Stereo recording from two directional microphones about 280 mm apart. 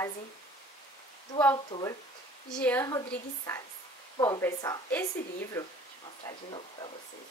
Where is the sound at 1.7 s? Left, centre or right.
Centre.